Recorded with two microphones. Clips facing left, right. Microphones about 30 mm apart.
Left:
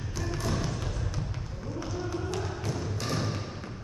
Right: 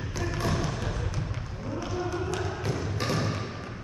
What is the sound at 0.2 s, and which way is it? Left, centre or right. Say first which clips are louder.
Bouncing: right 2 dB; right.